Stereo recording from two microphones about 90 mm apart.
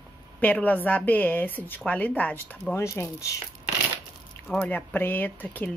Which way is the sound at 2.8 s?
35° left (ahead or behind).